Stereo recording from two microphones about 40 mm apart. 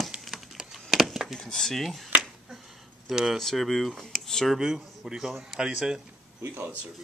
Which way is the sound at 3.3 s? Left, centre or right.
Centre.